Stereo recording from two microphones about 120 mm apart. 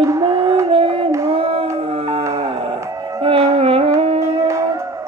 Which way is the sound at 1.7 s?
50° right (ahead or behind).